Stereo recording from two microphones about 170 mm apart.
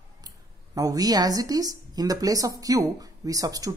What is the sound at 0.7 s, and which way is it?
A woman's voice, 20° right (ahead or behind).